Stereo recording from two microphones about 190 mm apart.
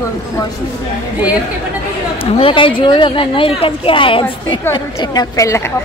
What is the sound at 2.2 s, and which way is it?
Speech, 30° left (ahead or behind).